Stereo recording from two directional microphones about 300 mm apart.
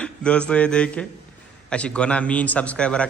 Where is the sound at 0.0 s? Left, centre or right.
Centre.